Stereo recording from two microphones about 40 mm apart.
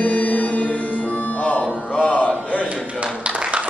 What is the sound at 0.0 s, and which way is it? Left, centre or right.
Music, left.